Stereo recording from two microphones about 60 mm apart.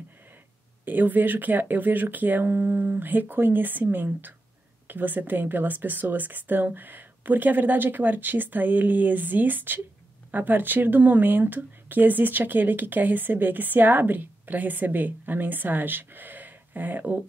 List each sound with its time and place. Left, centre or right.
0.8 s speech: right